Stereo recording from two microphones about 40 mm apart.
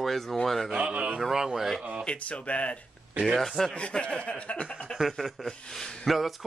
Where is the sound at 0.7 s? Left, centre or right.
Right.